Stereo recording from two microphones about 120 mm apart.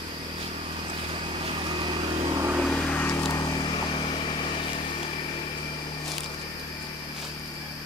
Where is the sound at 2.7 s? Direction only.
10° left (ahead or behind).